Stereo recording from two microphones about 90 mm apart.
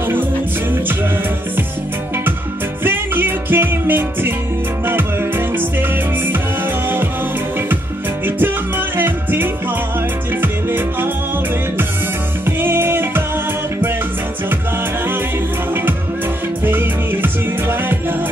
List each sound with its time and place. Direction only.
2.8 s music: 25° right (ahead or behind)
5.6 s music: 25° right (ahead or behind)
8.4 s music: 20° right (ahead or behind)
12.4 s music: 25° right (ahead or behind)
16.6 s music: 25° right (ahead or behind)